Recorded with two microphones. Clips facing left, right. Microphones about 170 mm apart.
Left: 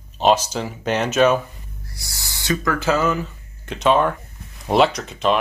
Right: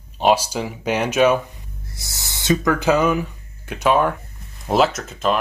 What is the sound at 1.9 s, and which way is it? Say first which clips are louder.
Speech: right 1 dB; 20° right (ahead or behind).